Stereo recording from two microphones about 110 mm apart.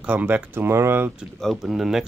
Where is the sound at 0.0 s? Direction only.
15° right (ahead or behind).